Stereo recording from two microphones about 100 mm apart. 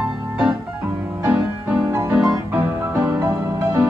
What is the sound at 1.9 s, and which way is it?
Music, 25° right (ahead or behind).